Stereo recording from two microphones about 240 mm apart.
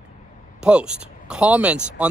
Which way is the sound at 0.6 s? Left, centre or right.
Centre.